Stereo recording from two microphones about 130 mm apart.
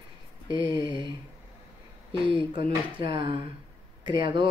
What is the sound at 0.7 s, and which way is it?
Speech, 40° right (ahead or behind).